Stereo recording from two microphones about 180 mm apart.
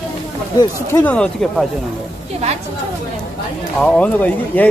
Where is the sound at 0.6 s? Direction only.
10° left (ahead or behind).